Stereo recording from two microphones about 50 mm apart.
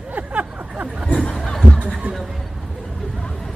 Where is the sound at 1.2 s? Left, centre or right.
Centre.